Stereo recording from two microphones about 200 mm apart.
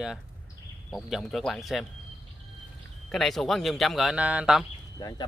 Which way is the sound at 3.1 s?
Centre (ahead or behind).